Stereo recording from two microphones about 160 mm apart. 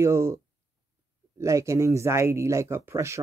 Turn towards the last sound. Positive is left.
turn(degrees=-15)  # may be behind; listen again after turning